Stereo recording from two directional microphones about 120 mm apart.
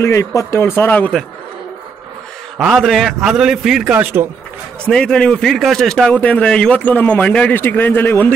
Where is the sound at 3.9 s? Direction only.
15° right (ahead or behind).